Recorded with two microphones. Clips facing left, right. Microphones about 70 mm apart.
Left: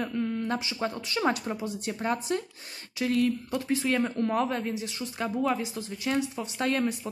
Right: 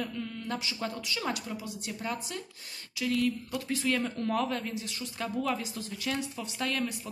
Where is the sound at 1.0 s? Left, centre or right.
Left.